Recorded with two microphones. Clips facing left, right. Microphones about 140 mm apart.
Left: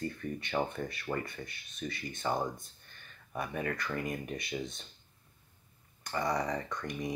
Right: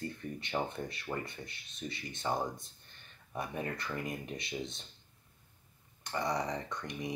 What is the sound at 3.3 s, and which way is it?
Speech, 25° right (ahead or behind).